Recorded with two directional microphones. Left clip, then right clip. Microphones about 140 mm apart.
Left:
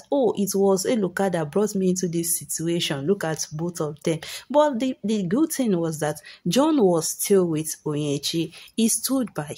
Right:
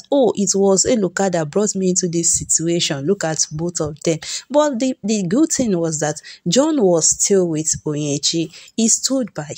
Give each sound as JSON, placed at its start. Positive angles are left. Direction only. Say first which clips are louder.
{"t": 0.1, "sound": "speech", "louder": "right 6 dB", "side_deg": -30}